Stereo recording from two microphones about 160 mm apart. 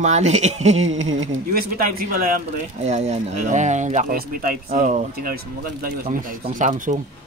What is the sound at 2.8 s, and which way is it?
Speech, 45° right (ahead or behind).